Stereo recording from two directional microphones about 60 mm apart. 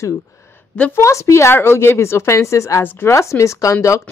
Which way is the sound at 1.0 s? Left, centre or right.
Left.